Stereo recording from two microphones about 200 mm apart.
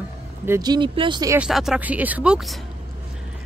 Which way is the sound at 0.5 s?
20° right (ahead or behind).